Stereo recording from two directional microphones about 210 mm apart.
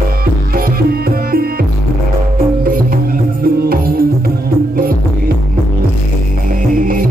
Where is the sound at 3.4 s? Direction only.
45° right (ahead or behind).